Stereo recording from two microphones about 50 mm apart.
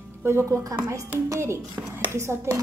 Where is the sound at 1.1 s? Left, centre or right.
Right.